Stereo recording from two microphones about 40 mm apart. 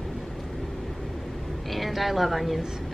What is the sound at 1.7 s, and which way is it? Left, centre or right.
Speech, centre.